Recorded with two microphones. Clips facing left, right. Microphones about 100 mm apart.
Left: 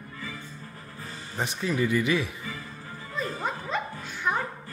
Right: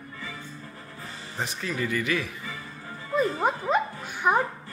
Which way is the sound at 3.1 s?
50° right (ahead or behind).